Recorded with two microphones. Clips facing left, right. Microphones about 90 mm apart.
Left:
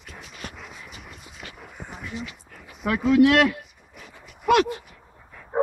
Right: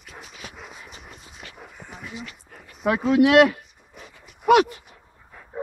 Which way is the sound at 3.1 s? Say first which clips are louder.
Right 2 dB; 10° right (ahead or behind).